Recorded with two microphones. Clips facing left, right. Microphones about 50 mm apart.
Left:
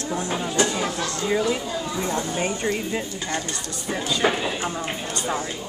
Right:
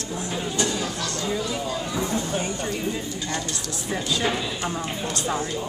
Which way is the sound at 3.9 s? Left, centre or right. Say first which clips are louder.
Left 1 dB; centre.